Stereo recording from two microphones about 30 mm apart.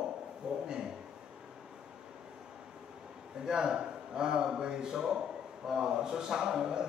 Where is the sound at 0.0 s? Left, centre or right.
Right.